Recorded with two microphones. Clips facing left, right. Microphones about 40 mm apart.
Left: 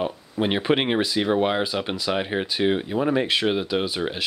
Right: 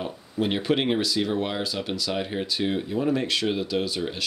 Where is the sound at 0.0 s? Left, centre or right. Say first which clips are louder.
Left 3 dB; left.